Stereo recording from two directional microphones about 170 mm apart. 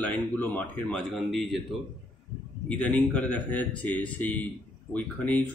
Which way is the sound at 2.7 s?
5° left (ahead or behind).